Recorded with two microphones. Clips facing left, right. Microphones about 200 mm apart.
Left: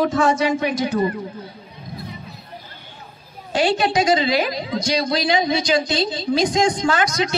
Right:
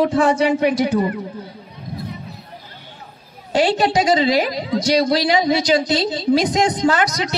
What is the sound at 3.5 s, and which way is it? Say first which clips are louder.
A woman's voice: right 2 dB; 35° right (ahead or behind).